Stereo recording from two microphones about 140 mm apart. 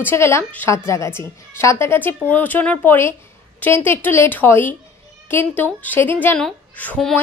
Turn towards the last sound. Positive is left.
turn(degrees=5)  # may be behind; listen again after turning